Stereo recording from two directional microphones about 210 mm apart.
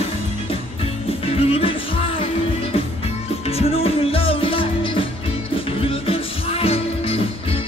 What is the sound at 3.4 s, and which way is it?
Music, 30° left (ahead or behind).